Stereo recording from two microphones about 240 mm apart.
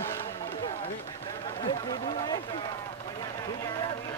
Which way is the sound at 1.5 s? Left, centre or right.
Centre.